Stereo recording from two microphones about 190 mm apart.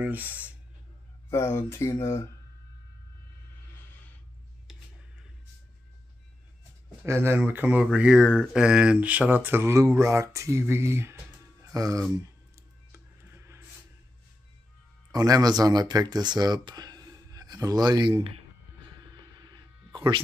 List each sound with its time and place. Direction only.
0.0 s speech: 10° right (ahead or behind)
1.3 s speech: 15° left (ahead or behind)
7.0 s speech: 15° right (ahead or behind)
12.9 s a sound: 15° right (ahead or behind)
15.1 s speech: 20° right (ahead or behind)
19.3 s a sound: 20° right (ahead or behind)